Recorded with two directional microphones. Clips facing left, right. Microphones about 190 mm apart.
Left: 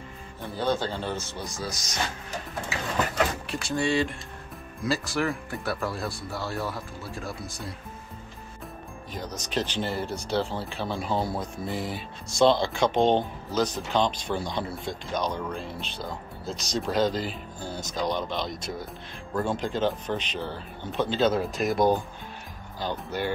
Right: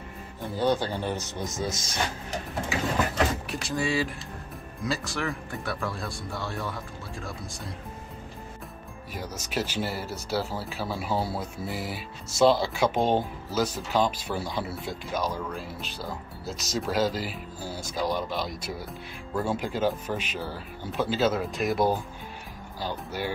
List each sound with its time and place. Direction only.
0.4 s speech: 15° right (ahead or behind)
3.6 s speech: centre (ahead or behind)
9.1 s speech: 5° right (ahead or behind)